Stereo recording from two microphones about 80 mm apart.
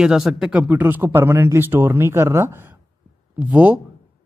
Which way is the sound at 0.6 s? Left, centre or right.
Right.